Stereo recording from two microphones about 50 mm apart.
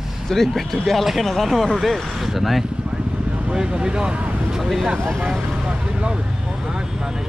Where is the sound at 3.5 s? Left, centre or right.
Centre.